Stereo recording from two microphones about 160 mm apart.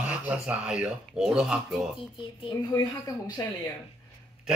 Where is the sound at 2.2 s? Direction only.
30° left (ahead or behind).